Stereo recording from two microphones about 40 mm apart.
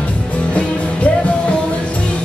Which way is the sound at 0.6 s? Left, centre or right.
Left.